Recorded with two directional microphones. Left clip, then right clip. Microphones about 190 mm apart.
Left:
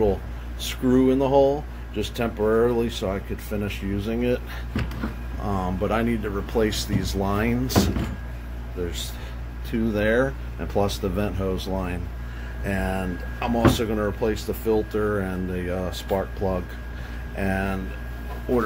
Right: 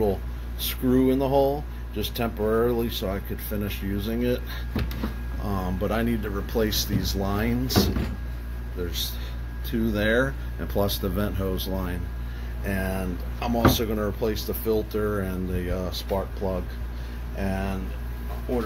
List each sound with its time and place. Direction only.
0.6 s speech: centre (ahead or behind)
5.4 s speech: 10° left (ahead or behind)
6.7 s speech: 30° left (ahead or behind)
7.2 s speech: 10° left (ahead or behind)
7.6 s speech: 35° left (ahead or behind)
9.7 s speech: centre (ahead or behind)
16.1 s speech: 20° left (ahead or behind)